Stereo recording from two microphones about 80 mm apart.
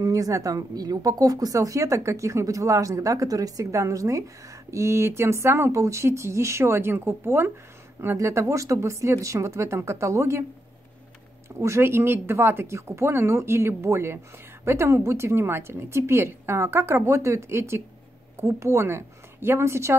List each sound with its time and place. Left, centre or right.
0.0 s speech: right
11.6 s speech: right